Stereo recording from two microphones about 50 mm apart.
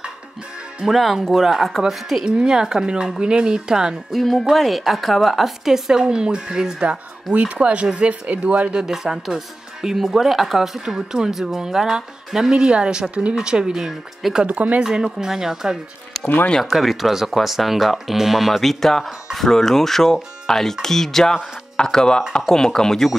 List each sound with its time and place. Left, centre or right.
0.8 s a woman's voice: centre
2.2 s speech: centre
4.1 s a woman's voice: centre; by 8.7 s right
8.7 s speech: centre
14.4 s speech: right
14.8 s a woman's voice: centre